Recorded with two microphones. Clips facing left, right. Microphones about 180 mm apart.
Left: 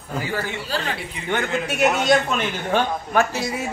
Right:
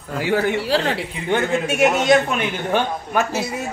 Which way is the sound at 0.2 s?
70° right (ahead or behind).